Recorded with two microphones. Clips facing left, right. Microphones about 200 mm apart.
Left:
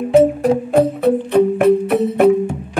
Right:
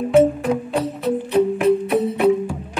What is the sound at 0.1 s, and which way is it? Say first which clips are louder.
Music: left 3 dB; 35° left (ahead or behind).